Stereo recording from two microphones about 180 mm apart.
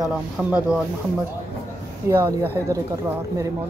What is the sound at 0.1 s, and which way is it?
Speech, 10° right (ahead or behind).